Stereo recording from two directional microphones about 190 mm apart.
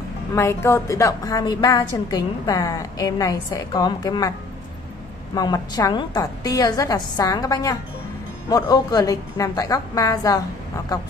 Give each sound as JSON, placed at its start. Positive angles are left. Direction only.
{"t": 0.3, "sound": "a woman's voice", "side_deg": 15}
{"t": 5.3, "sound": "a woman's voice", "side_deg": 20}